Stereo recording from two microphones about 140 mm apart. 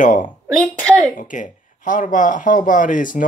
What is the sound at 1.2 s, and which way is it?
Speech, 70° left (ahead or behind).